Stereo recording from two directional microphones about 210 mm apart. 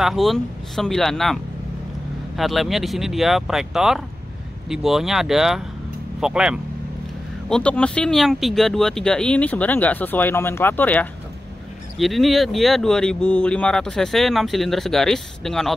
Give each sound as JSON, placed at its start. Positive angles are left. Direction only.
{"t": 0.0, "sound": "speech", "side_deg": 0}